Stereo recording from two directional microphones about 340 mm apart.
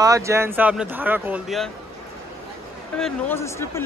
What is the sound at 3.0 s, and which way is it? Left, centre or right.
Speech, centre.